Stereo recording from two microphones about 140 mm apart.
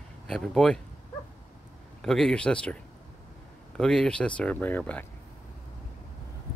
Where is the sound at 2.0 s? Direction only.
5° left (ahead or behind).